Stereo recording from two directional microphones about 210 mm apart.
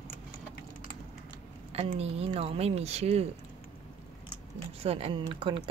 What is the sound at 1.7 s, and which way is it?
Speech, 30° right (ahead or behind).